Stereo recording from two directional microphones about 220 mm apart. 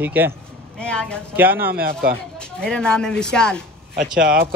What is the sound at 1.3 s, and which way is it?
Speech, 10° right (ahead or behind).